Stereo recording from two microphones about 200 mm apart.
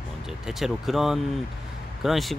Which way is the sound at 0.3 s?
Centre (ahead or behind).